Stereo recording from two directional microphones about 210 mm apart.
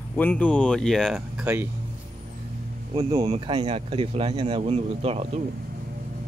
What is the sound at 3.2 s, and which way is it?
Speech, 25° right (ahead or behind).